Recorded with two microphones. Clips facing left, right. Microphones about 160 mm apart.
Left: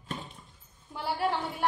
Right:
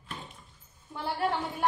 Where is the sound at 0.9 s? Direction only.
Centre (ahead or behind).